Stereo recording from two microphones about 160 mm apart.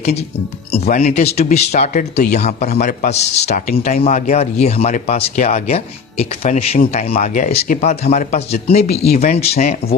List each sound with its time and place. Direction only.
0.8 s speech: 70° left (ahead or behind)
1.1 s speech: 45° left (ahead or behind)
7.6 s speech: 55° left (ahead or behind)
7.9 s speech: 45° left (ahead or behind)